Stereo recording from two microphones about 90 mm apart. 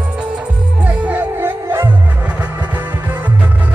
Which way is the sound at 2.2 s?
15° right (ahead or behind).